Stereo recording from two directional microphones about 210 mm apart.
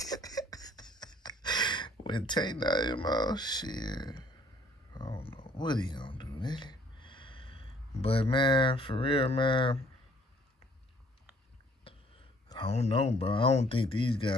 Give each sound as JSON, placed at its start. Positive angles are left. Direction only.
{"t": 0.0, "sound": "a sound", "side_deg": 15}
{"t": 5.5, "sound": "speech", "side_deg": 20}
{"t": 12.4, "sound": "speech", "side_deg": 25}